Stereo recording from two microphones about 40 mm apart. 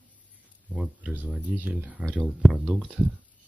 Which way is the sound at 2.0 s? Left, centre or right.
Right.